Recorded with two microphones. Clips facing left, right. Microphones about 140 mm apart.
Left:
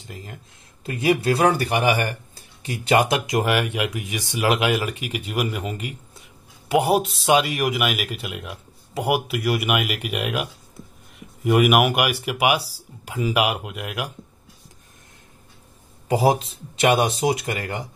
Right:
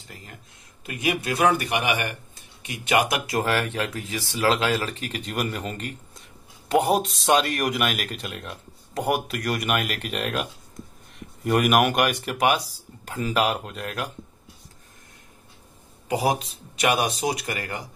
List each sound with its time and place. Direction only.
0.0 s speech: 20° left (ahead or behind)
16.1 s speech: 30° left (ahead or behind)